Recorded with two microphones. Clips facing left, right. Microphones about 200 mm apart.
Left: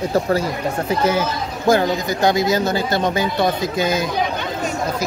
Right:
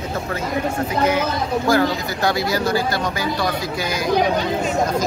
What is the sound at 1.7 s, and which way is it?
Speech, 20° left (ahead or behind).